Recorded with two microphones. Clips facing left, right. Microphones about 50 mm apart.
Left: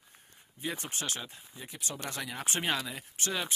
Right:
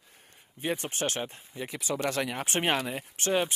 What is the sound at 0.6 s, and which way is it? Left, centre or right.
Speech, right.